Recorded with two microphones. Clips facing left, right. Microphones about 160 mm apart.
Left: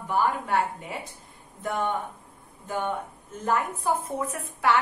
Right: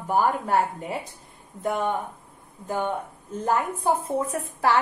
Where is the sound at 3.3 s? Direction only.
30° right (ahead or behind).